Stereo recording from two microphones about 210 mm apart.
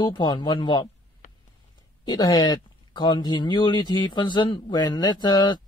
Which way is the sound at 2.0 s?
20° left (ahead or behind).